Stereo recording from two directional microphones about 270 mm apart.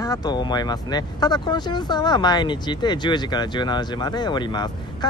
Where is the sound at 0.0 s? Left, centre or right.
Centre.